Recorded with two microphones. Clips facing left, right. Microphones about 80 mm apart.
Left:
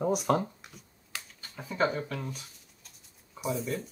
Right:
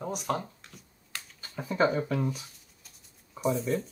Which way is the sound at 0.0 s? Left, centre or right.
Centre.